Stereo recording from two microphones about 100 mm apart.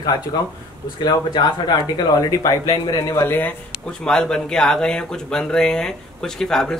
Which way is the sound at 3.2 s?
20° left (ahead or behind).